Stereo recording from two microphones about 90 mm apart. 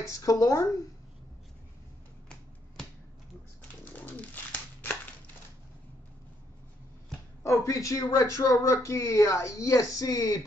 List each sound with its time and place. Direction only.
0.0 s speech: 40° left (ahead or behind)
3.9 s bird: 20° left (ahead or behind)
7.4 s speech: 35° left (ahead or behind)